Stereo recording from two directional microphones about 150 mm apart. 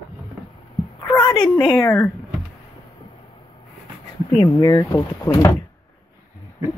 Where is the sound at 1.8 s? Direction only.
20° left (ahead or behind).